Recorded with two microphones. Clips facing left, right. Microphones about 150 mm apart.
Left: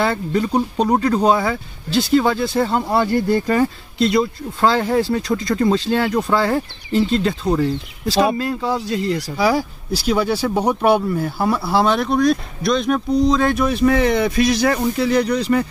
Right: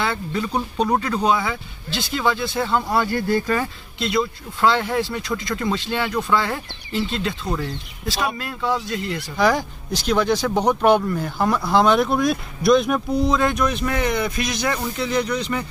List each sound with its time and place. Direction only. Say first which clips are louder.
0.0 s speech: left 5 dB; 40° left (ahead or behind)
3.1 s speech: left 4 dB; 25° left (ahead or behind)
9.4 s speech: even; 5° left (ahead or behind)
13.7 s speech: left 7 dB; 35° left (ahead or behind)